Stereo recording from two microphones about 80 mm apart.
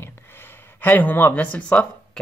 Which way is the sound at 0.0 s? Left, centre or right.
Left.